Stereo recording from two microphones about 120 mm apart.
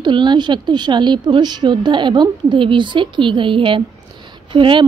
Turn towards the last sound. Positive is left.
turn(degrees=-45)  # may be behind; listen again after turning